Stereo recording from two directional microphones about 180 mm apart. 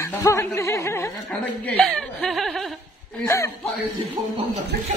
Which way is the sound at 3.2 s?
15° left (ahead or behind).